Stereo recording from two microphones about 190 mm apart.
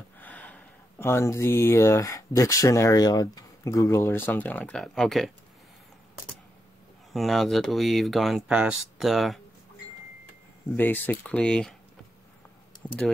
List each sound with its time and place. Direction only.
0.2 s speech: 10° left (ahead or behind)
7.1 s speech: centre (ahead or behind)
10.8 s speech: 10° left (ahead or behind)